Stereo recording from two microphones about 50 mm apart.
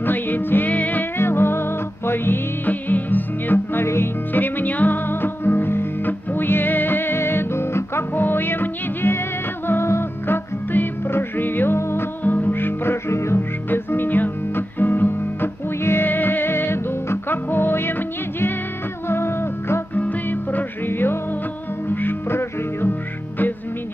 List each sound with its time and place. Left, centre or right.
0.0 s music: left
1.1 s music: left
4.3 s music: left
8.1 s music: left
12.2 s music: left
13.4 s music: left
19.9 s music: left